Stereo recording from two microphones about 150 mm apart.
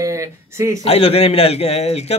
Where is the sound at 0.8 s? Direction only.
45° left (ahead or behind).